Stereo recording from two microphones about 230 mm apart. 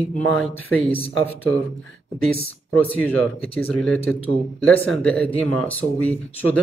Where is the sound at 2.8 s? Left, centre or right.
Centre.